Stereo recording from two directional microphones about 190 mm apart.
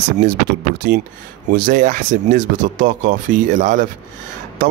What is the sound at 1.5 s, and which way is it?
Speech, 50° right (ahead or behind).